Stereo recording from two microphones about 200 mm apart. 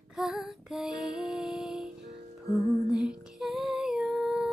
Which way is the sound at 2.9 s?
5° right (ahead or behind).